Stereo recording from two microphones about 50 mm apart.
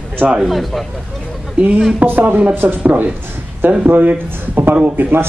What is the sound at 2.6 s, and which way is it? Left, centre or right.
Speech, right.